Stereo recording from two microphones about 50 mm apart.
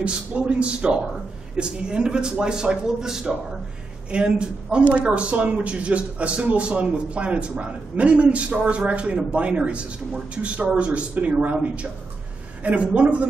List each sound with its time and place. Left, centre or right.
0.0 s a man's voice: right